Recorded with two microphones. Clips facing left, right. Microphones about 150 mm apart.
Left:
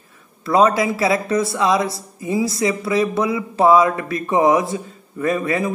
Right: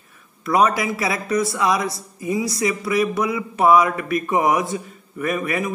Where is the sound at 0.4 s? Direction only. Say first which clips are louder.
Left 3 dB; 30° left (ahead or behind).